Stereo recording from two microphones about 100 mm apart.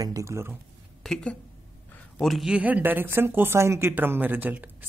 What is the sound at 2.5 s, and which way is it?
A woman's voice, 15° right (ahead or behind).